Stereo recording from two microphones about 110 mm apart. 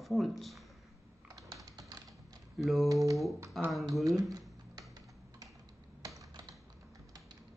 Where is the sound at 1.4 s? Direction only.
30° right (ahead or behind).